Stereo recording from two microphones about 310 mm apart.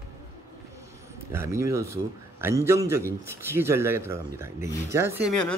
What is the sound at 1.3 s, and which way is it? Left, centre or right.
Speech, centre.